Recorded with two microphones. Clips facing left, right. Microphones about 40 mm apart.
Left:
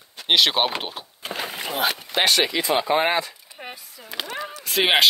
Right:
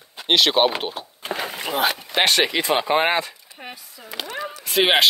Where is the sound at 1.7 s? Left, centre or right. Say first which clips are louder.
Right 2 dB; right.